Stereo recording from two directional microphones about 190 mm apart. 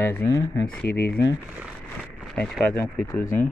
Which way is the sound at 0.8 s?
55° left (ahead or behind).